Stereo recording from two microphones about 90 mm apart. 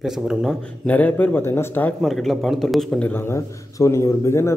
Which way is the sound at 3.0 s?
20° left (ahead or behind).